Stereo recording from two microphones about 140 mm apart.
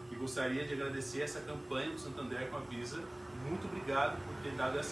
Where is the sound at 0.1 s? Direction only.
Centre (ahead or behind).